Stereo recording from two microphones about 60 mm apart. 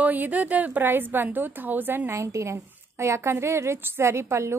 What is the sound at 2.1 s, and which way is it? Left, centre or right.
A woman's voice, right.